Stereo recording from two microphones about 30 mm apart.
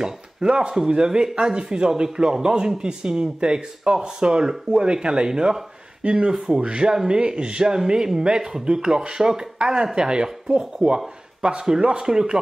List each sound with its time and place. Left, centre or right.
0.0 s speech: right
8.7 s speech: right
9.6 s speech: right
9.9 s speech: right
11.4 s speech: right